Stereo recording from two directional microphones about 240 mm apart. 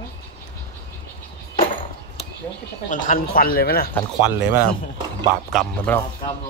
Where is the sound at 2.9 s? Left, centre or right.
Left.